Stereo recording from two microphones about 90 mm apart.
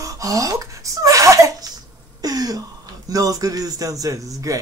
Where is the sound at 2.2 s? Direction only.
45° right (ahead or behind).